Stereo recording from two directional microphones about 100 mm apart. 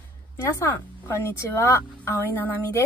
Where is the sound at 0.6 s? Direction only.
30° left (ahead or behind).